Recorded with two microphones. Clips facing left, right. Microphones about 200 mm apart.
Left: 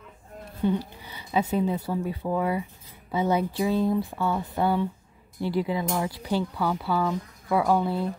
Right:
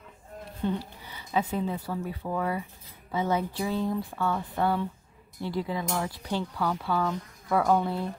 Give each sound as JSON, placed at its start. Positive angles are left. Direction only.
{"t": 0.6, "sound": "speech", "side_deg": 10}